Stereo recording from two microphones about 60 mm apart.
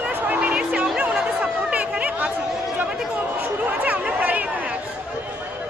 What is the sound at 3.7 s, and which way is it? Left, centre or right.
Chatter, right.